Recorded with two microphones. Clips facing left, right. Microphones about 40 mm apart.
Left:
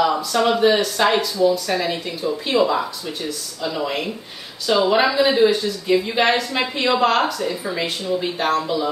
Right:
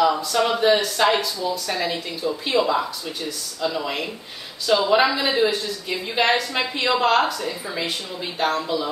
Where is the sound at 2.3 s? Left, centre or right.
Centre.